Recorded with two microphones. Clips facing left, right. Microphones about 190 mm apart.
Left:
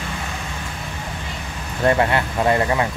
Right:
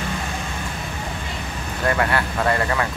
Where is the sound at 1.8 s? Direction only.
25° left (ahead or behind).